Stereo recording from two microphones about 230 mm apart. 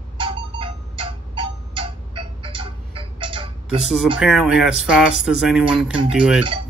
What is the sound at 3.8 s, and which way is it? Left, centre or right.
Speech, centre.